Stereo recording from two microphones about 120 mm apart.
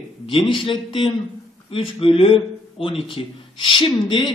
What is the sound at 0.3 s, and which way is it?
A man's voice, 45° left (ahead or behind).